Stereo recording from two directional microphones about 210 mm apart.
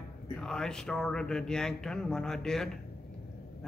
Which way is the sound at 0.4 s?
5° left (ahead or behind).